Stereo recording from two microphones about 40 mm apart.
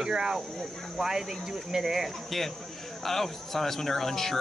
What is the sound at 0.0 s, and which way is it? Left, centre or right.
Speech, centre.